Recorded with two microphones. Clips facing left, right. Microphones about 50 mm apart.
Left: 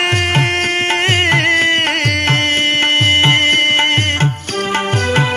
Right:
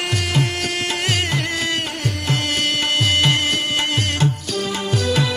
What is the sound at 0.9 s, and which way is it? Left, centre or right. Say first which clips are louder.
Music: left 10 dB; left.